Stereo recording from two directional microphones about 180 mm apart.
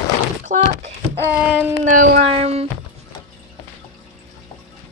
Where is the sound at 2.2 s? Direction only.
35° right (ahead or behind).